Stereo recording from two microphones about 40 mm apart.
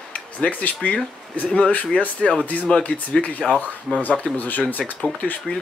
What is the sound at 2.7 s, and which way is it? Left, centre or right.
Speech, left.